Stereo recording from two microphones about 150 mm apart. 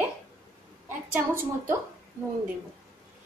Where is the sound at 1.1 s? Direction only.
15° right (ahead or behind).